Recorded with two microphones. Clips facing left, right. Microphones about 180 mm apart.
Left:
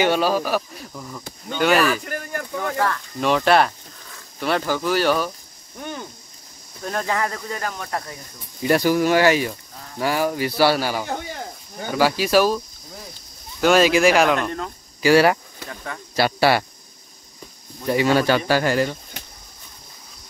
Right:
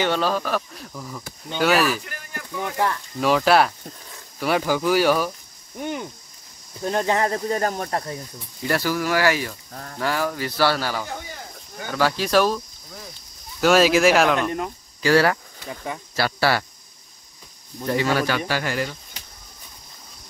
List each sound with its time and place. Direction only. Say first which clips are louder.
0.0 s speech: left 3 dB; 10° left (ahead or behind)
2.0 s a sound: left 8 dB; 50° left (ahead or behind)
3.2 s speech: even; 5° right (ahead or behind)
5.8 s cricket: right 4 dB; 15° right (ahead or behind)
6.8 s speech: right 3 dB; 25° right (ahead or behind)
8.6 s speech: left 5 dB; 20° left (ahead or behind); by 14.5 s centre (ahead or behind)
15.0 s speech: left 3 dB; 10° left (ahead or behind)
15.7 s speech: right 3 dB; 15° right (ahead or behind)
16.2 s speech: left 4 dB; 20° left (ahead or behind)
17.8 s speech: left 3 dB; 10° left (ahead or behind)
18.1 s speech: left 5 dB; 30° left (ahead or behind)